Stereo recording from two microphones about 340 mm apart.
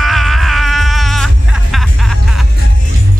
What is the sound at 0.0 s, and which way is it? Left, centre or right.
Music, centre.